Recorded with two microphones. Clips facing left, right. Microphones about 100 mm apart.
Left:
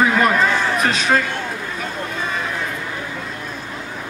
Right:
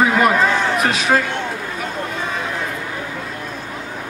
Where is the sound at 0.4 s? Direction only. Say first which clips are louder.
Right 1 dB; 30° right (ahead or behind).